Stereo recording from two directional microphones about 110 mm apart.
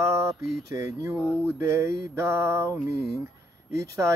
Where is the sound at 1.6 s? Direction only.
25° right (ahead or behind).